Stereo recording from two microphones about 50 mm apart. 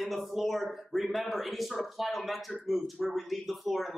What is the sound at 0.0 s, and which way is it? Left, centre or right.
Speech, centre.